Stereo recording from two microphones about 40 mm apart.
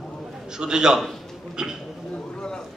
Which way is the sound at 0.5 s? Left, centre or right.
Centre.